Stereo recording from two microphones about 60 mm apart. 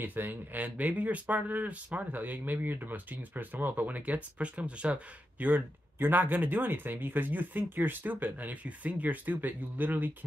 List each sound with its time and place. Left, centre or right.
0.0 s speech: right